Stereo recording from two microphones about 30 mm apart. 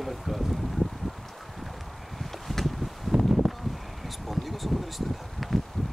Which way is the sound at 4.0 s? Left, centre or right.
Centre.